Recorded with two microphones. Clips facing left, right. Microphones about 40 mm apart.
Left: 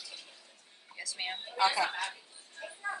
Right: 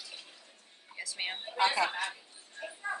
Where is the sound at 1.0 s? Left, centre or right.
Centre.